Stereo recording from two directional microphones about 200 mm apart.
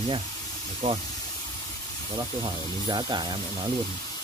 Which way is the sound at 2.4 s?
20° right (ahead or behind).